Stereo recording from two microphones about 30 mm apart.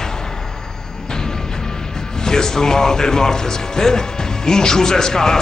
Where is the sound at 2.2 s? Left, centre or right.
Left.